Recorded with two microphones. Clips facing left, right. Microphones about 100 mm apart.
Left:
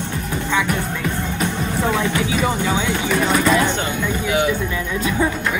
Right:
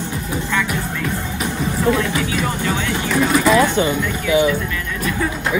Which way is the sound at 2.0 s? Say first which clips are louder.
Left 1 dB; 20° left (ahead or behind).